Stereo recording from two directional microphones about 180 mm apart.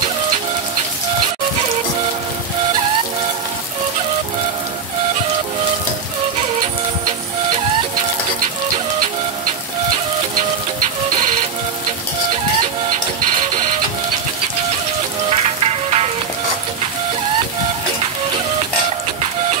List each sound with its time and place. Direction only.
15.3 s music: 35° right (ahead or behind)